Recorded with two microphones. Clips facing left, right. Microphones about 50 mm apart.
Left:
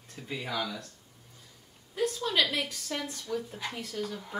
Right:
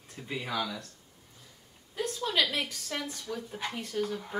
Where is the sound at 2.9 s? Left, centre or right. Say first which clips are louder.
Left 2 dB; centre.